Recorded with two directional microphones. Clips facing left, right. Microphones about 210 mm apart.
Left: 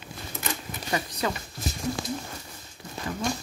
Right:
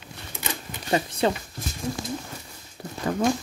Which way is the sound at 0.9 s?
25° right (ahead or behind).